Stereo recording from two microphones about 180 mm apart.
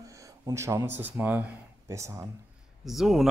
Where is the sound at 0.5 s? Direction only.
15° right (ahead or behind).